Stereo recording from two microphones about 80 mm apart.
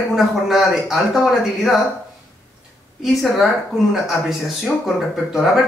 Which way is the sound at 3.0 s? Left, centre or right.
Centre.